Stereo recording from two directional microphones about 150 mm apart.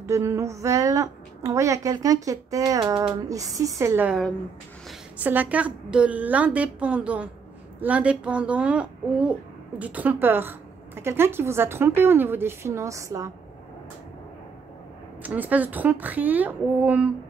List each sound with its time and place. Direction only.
0.0 s a woman's voice: 20° right (ahead or behind)
5.2 s a woman's voice: 10° right (ahead or behind)
15.2 s a woman's voice: 10° right (ahead or behind)